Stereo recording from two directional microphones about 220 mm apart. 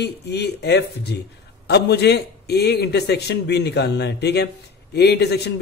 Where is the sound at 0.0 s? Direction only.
50° left (ahead or behind).